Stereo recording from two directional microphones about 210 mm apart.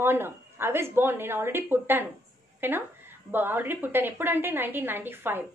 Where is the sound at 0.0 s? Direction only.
10° right (ahead or behind).